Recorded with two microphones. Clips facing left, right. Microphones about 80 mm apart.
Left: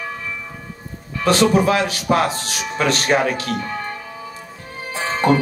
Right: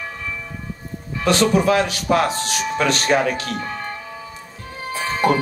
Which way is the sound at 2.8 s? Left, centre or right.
Left.